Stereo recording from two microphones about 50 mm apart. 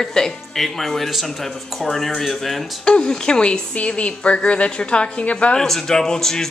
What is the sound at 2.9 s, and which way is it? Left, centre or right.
A woman's voice, centre.